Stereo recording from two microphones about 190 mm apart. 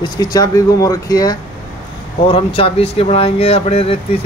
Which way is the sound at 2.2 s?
30° left (ahead or behind).